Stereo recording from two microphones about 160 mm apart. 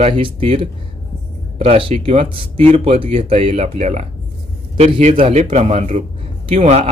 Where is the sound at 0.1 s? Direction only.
35° right (ahead or behind).